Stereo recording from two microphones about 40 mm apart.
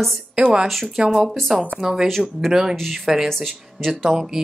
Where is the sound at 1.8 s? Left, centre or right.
Centre.